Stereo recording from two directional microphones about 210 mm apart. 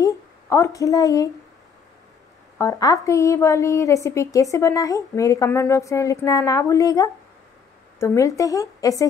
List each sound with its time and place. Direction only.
0.0 s speech: 15° left (ahead or behind)
2.6 s a woman's voice: 15° left (ahead or behind)